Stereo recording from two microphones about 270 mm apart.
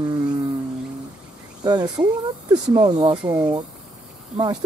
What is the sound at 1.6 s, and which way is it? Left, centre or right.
Speech, centre.